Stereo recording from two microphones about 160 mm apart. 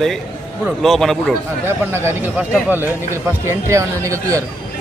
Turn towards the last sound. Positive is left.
turn(degrees=-20)  # may be behind; listen again after turning